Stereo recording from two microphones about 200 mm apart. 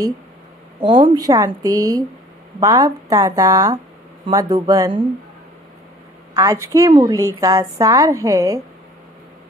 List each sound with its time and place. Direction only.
0.8 s a woman's voice: 25° right (ahead or behind)
6.3 s a woman's voice: 15° right (ahead or behind)